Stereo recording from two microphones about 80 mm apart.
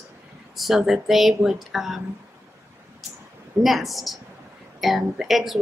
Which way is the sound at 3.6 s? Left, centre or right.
Centre.